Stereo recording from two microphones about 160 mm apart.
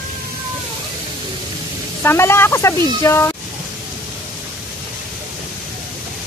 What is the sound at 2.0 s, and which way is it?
Speech, 15° left (ahead or behind).